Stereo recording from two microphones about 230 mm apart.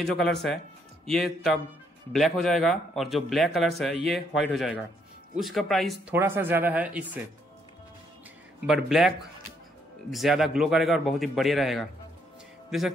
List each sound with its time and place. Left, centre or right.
0.0 s speech: centre
8.6 s speech: centre